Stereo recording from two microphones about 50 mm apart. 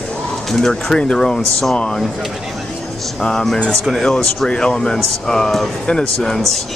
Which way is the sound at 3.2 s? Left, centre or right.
Centre.